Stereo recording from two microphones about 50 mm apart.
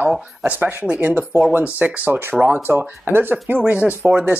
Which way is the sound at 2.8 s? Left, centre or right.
Right.